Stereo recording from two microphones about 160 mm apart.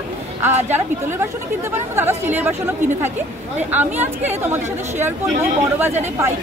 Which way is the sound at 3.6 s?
10° right (ahead or behind).